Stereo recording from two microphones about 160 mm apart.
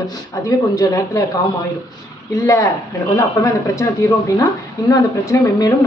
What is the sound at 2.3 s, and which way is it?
A woman's voice, 20° left (ahead or behind).